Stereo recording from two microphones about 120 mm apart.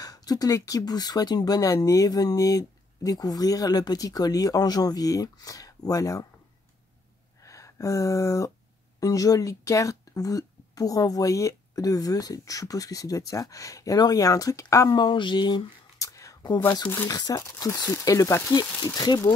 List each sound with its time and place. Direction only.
0.0 s speech: 30° left (ahead or behind)
7.4 s speech: 25° left (ahead or behind)
14.9 s speech: 40° left (ahead or behind)
16.1 s a sound: 25° left (ahead or behind)
16.8 s speech: 15° left (ahead or behind)
17.1 s speech: 35° left (ahead or behind)